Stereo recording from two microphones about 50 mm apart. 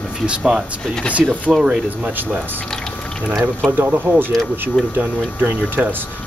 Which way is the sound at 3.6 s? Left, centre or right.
Right.